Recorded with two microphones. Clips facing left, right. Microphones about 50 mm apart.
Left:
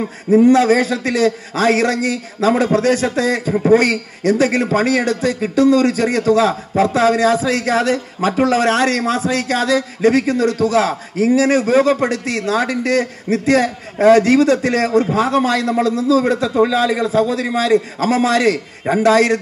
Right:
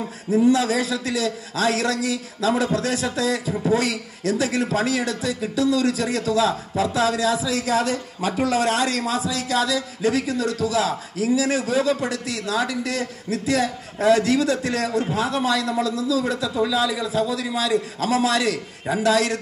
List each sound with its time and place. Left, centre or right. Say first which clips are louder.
0.5 s a man's voice: left 7 dB; left